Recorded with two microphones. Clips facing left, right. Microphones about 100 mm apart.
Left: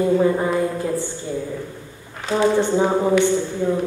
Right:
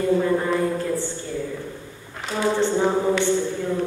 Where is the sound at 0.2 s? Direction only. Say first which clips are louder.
Left 3 dB; 15° left (ahead or behind).